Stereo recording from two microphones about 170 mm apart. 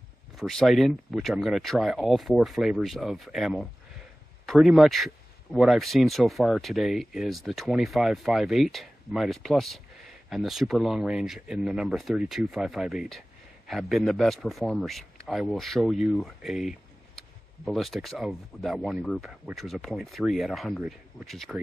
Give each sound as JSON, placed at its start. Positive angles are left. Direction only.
{"t": 0.4, "sound": "speech", "side_deg": 0}